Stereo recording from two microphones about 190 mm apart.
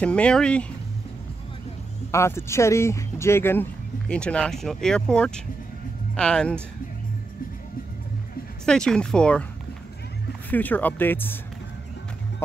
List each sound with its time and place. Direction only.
0.0 s speech: 5° left (ahead or behind)
2.0 s speech: 15° left (ahead or behind)
8.6 s speech: 5° left (ahead or behind)
10.5 s speech: 10° left (ahead or behind)